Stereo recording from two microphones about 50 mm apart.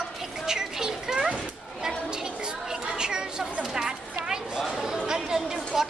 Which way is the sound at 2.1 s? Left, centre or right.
Centre.